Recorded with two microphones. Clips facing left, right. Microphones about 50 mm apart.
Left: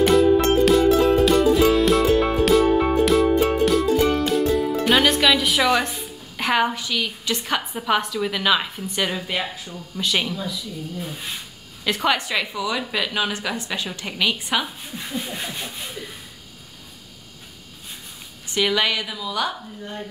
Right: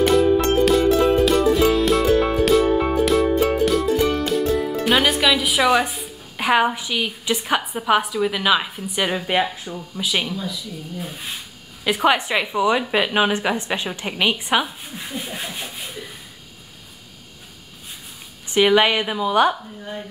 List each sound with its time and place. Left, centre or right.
0.0 s music: centre
9.1 s speech: right
9.9 s speech: centre
11.8 s a woman's voice: centre
15.0 s a sound: centre
18.5 s a woman's voice: right